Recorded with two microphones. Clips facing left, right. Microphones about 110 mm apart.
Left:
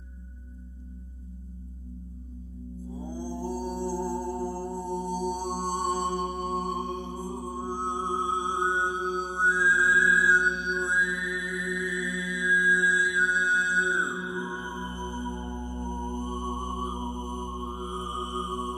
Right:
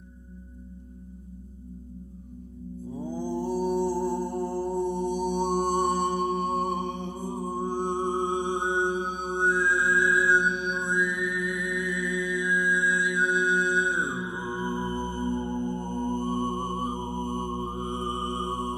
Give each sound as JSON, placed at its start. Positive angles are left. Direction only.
{"t": 2.9, "sound": "mantra", "side_deg": -60}